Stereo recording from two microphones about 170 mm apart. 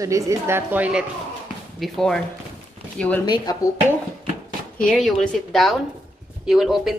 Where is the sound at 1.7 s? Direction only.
Centre (ahead or behind).